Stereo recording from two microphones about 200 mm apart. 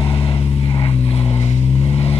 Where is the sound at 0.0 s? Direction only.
25° left (ahead or behind).